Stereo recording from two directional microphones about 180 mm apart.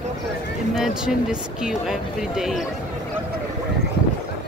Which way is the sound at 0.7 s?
5° right (ahead or behind).